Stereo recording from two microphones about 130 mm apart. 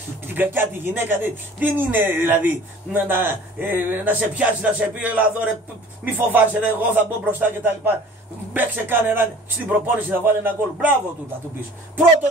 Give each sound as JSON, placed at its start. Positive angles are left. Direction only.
{"t": 0.3, "sound": "a man's voice", "side_deg": -15}